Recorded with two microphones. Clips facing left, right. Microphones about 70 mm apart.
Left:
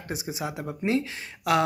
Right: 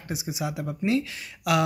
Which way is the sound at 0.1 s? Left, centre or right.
Left.